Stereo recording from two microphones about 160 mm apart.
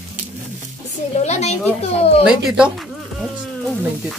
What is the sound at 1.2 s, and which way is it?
Speech, 45° left (ahead or behind).